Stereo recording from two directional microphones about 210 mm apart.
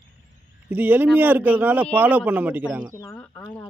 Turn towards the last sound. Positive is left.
turn(degrees=10)  # may be behind; listen again after turning